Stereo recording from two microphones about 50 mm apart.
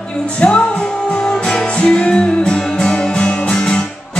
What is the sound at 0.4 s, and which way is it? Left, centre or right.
Music, left.